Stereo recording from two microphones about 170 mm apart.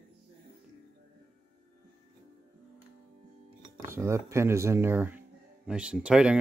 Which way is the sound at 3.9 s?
15° right (ahead or behind).